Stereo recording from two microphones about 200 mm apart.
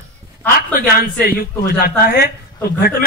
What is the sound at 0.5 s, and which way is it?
Speech, 45° left (ahead or behind).